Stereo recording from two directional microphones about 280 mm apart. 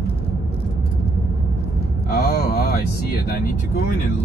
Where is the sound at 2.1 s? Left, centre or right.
Left.